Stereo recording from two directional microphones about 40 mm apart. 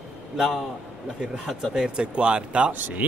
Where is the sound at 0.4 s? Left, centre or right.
Centre.